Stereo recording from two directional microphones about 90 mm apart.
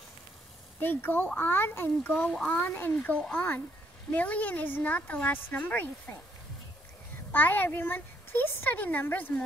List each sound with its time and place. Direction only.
0.7 s a child's voice: 20° left (ahead or behind)
2.0 s speech: 15° left (ahead or behind)
7.3 s a child's voice: 20° left (ahead or behind)